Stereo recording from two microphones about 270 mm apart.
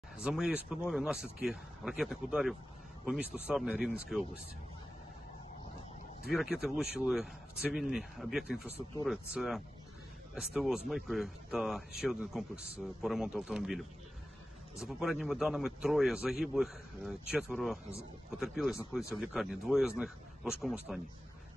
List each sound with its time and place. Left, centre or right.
0.2 s a man's voice: centre
6.3 s a man's voice: centre
8.6 s speech: right
9.0 s a man's voice: centre